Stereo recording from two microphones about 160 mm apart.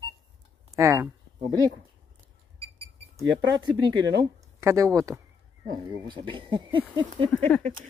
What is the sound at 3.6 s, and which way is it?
Speech, 25° right (ahead or behind).